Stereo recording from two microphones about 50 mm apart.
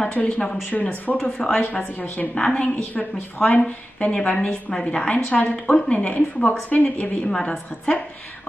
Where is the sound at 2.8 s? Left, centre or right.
Left; by 7.9 s centre.